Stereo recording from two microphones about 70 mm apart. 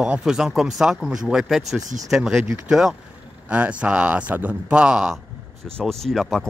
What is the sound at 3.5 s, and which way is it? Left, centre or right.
Speech, centre.